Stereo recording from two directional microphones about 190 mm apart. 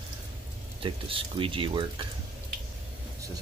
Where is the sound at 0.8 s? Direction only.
25° right (ahead or behind).